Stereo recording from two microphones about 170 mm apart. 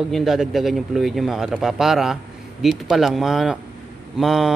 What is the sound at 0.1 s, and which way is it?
A man's voice, centre (ahead or behind).